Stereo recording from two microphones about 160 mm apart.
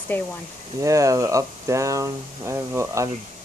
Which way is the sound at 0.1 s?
10° left (ahead or behind).